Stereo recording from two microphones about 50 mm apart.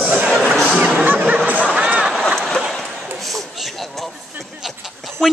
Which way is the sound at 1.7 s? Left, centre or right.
Right.